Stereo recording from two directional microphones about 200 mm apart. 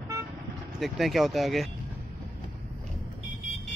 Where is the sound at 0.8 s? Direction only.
Centre (ahead or behind).